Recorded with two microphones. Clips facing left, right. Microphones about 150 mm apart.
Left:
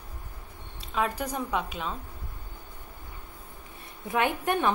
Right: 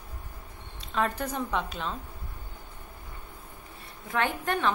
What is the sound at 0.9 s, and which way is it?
A woman's voice, 10° left (ahead or behind).